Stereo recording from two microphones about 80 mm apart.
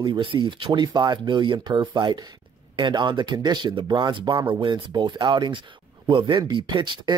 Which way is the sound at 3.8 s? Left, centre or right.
Right.